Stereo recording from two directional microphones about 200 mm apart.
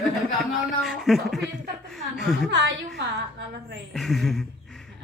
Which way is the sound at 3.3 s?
55° right (ahead or behind).